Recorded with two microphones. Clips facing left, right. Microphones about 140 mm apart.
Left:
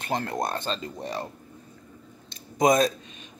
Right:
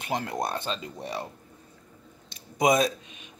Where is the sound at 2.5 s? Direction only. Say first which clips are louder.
Left 2 dB; 10° right (ahead or behind).